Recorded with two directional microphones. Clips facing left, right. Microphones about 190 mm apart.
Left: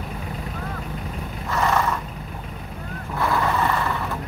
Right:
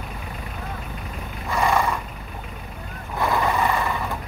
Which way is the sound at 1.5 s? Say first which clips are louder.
Right 1 dB; 10° right (ahead or behind).